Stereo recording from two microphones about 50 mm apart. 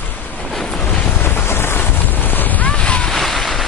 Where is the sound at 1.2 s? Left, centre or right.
Left.